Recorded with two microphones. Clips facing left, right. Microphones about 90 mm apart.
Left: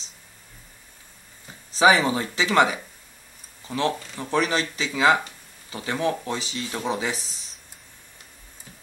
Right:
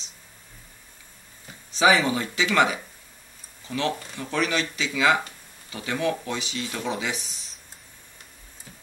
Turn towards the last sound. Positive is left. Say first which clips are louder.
# left 2 dB
turn(degrees=35)  # may be behind; listen again after turning